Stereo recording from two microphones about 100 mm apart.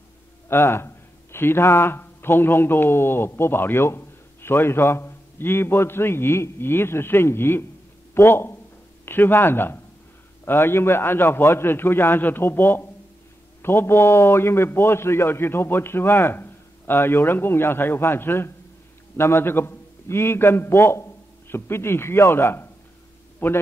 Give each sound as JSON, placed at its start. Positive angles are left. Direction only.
{"t": 0.5, "sound": "a man's voice", "side_deg": 25}